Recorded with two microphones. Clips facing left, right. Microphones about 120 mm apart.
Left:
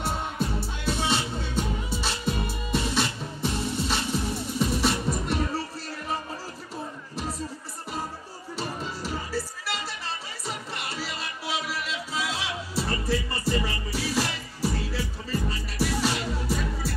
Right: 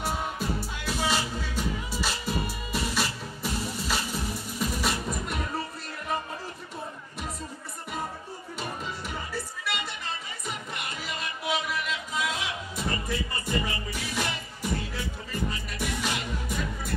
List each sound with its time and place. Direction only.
0.0 s music: 25° left (ahead or behind)
8.5 s music: 30° left (ahead or behind)